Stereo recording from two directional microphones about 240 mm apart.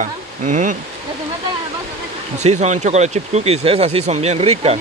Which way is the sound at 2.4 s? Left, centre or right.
Right.